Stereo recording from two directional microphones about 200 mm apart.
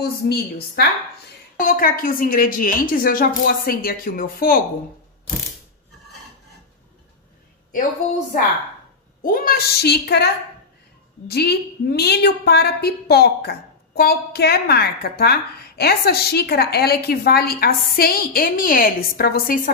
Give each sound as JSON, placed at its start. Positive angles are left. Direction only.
{"t": 0.0, "sound": "a woman's voice", "side_deg": 50}
{"t": 9.2, "sound": "a woman's voice", "side_deg": 45}